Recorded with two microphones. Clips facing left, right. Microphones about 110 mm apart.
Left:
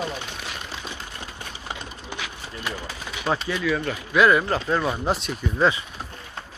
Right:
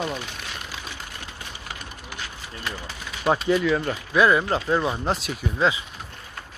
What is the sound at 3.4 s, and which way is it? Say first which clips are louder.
Speech: right 4 dB; 25° right (ahead or behind).